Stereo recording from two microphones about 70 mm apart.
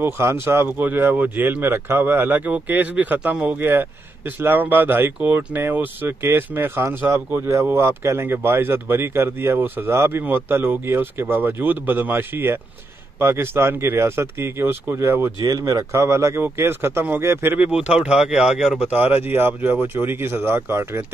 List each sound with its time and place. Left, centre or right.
0.0 s speech: right
0.7 s speech: right
7.7 s speech: right
15.5 s speech: right
17.7 s speech: centre
18.9 s speech: right